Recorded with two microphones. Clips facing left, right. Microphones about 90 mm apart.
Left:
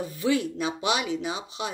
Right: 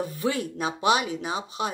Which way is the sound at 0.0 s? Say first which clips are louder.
Left 2 dB; 45° right (ahead or behind).